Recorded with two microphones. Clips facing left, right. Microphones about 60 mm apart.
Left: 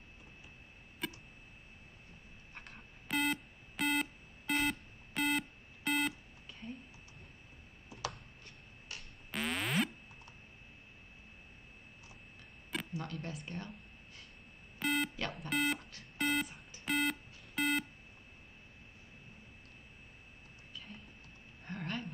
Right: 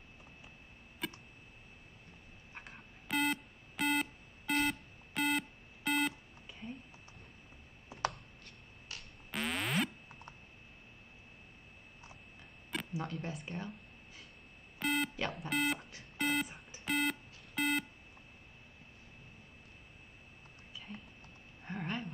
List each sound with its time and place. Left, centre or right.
1.0 s tick: centre
2.5 s busy signal: centre
5.9 s beep: centre
8.8 s synthesizer: centre
12.7 s a sound: centre
16.0 s beep: centre
20.7 s patter: centre
21.6 s a sound: centre